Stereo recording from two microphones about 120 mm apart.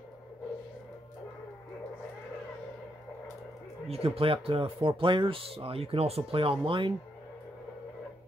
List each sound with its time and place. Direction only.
3.9 s speech: 55° right (ahead or behind)